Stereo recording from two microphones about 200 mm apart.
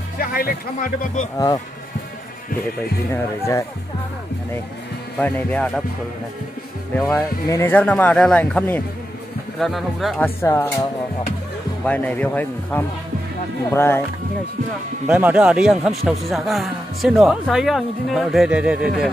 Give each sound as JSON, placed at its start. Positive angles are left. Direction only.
{"t": 0.2, "sound": "speech", "side_deg": 50}
{"t": 3.1, "sound": "speech", "side_deg": 15}
{"t": 5.2, "sound": "speech", "side_deg": 5}
{"t": 7.1, "sound": "a man's voice", "side_deg": 15}
{"t": 10.4, "sound": "speech", "side_deg": 15}
{"t": 15.0, "sound": "a man's voice", "side_deg": -5}